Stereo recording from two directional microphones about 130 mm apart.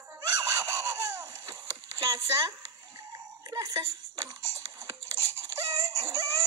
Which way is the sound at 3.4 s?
25° right (ahead or behind).